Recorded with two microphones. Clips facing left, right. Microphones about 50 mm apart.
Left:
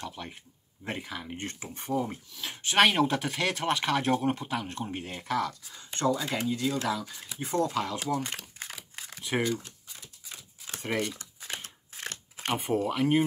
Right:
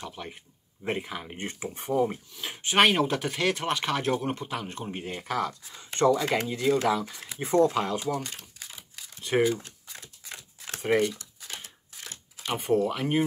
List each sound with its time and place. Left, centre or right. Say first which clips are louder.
0.0 s speech: right 1 dB; centre
2.3 s speech: even; centre
5.5 s speech: right 2 dB; right
7.1 s speech: right 2 dB; right
7.5 s speech: right 6 dB; right
9.0 s computer keyboard: left 3 dB; left
9.6 s a sound: right 3 dB; right
10.8 s speech: right 7 dB; centre
11.1 s a sound: left 2 dB; left
11.9 s crumpling: left 6 dB; left
12.5 s speech: right 3 dB; centre